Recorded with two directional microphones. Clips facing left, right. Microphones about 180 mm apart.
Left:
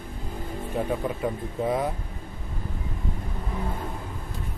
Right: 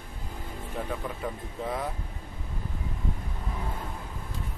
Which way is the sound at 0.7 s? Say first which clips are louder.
Left 7 dB; 20° left (ahead or behind).